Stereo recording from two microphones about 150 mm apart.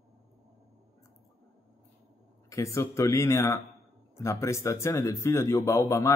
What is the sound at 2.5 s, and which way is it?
Speech, 20° left (ahead or behind).